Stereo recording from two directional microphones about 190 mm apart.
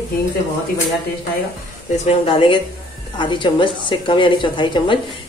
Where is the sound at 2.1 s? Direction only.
30° left (ahead or behind).